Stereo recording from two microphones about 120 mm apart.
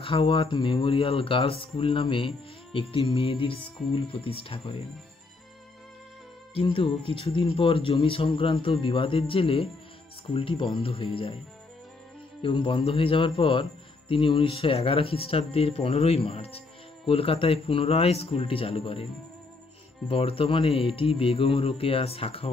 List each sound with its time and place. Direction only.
0.0 s speech: 45° left (ahead or behind)
6.5 s speech: 45° left (ahead or behind)
12.4 s speech: 45° left (ahead or behind)
20.1 s speech: 50° left (ahead or behind)